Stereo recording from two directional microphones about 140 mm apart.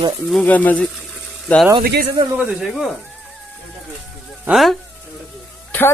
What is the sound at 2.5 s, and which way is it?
Speech, 5° right (ahead or behind).